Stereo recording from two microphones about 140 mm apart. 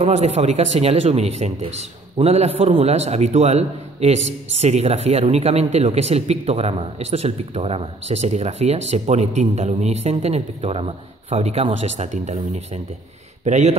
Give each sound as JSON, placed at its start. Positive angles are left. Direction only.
{"t": 0.0, "sound": "speech", "side_deg": -55}